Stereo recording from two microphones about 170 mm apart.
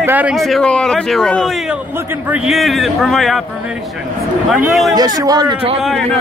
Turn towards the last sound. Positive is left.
turn(degrees=-25)  # may be behind; listen again after turning